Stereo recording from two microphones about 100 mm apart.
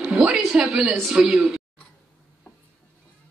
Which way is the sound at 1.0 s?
5° right (ahead or behind).